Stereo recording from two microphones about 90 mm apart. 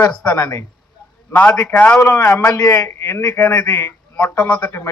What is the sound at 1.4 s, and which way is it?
Speech, 15° left (ahead or behind).